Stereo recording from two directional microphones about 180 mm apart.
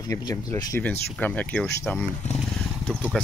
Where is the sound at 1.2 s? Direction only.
5° left (ahead or behind).